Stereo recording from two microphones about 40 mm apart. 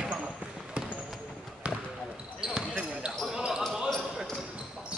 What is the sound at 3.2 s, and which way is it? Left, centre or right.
Basketball bounce, centre.